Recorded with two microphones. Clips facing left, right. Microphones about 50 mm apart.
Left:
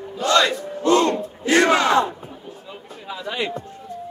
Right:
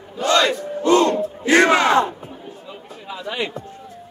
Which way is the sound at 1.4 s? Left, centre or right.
Right.